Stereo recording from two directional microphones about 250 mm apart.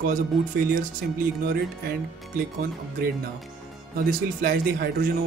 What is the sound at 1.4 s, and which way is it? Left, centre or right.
Music, right.